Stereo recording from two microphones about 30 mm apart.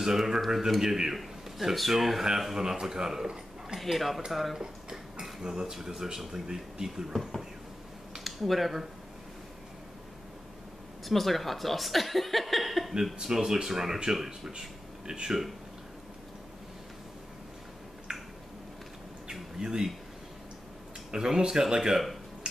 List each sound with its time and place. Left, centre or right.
0.0 s speech: centre
1.1 s a man's voice: centre
3.8 s speech: centre
4.6 s dishes: right
5.4 s speech: right
7.1 s speech: centre
11.1 s speech: centre
13.2 s speech: centre
15.0 s speech: right
19.6 s speech: centre
21.1 s speech: right